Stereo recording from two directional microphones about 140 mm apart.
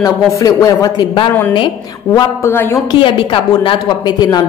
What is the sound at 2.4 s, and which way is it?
Speech, 15° left (ahead or behind).